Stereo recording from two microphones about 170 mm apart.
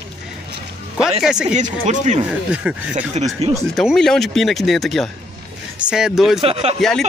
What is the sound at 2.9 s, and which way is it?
Speech, 40° right (ahead or behind).